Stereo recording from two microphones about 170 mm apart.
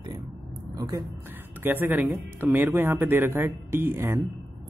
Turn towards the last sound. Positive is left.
turn(degrees=-15)  # may be behind; listen again after turning